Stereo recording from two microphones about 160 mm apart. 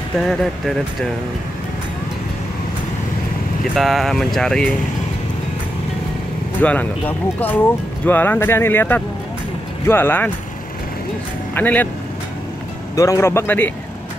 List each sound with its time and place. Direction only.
0.3 s speech: centre (ahead or behind)
3.7 s speech: centre (ahead or behind)
6.6 s speech: 10° left (ahead or behind)
11.5 s speech: 10° left (ahead or behind)
12.9 s speech: 20° left (ahead or behind)